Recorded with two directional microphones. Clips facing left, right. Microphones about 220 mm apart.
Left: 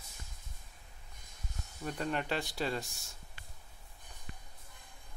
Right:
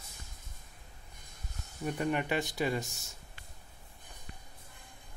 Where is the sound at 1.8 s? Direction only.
10° right (ahead or behind).